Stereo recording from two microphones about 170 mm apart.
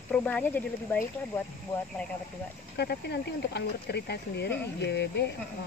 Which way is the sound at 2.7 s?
75° left (ahead or behind).